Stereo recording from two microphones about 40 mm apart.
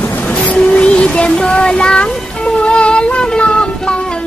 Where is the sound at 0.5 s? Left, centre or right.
Left.